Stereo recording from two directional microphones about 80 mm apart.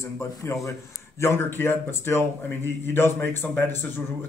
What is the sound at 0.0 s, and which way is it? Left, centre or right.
Speech, left.